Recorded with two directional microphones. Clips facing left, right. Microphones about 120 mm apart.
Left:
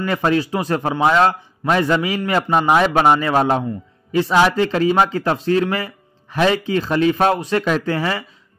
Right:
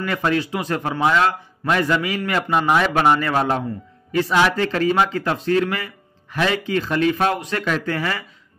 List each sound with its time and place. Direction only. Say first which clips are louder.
0.0 s a man's voice: left 3 dB; 30° left (ahead or behind)